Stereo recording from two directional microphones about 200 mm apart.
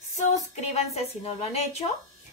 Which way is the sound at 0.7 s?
30° left (ahead or behind).